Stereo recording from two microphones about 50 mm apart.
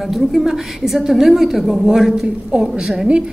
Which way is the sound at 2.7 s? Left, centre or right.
Centre.